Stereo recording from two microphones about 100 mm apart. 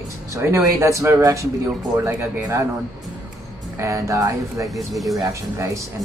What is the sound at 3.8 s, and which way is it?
Speech, 30° right (ahead or behind).